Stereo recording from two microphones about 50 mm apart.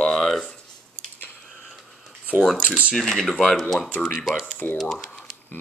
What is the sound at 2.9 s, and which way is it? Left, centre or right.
Speech, centre.